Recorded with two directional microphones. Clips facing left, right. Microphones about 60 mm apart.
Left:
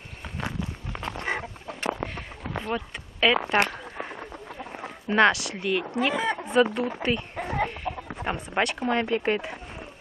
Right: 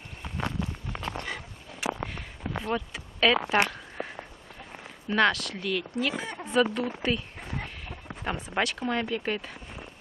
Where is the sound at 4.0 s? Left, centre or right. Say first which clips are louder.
Even; left.